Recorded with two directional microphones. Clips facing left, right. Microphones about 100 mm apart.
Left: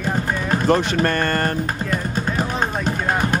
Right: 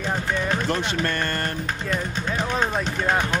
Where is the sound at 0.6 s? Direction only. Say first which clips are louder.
Left 7 dB; 50° left (ahead or behind).